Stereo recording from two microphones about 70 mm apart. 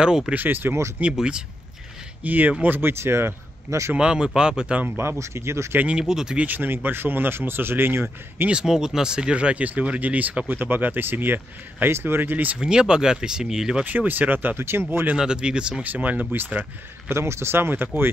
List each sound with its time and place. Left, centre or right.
0.3 s speech: right
1.1 s speech: centre
2.2 s speech: right
3.9 s speech: centre
4.7 s speech: right
5.2 s speech: right
5.8 s speech: centre
6.4 s speech: right
8.5 s speech: centre; by 12.5 s right
12.5 s speech: centre
13.8 s speech: right
15.1 s speech: centre
17.1 s speech: right